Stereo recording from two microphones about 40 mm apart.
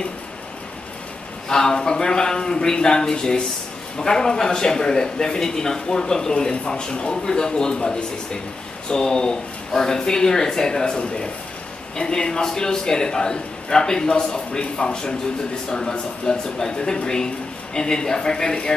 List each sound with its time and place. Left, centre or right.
1.5 s a man's voice: centre